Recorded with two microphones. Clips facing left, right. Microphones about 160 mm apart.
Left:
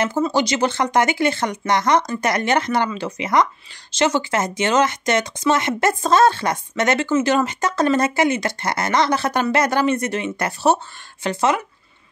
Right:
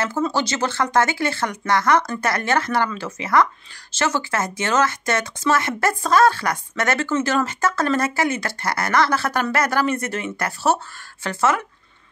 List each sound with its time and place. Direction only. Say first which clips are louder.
0.3 s speech: left 4 dB; 15° left (ahead or behind)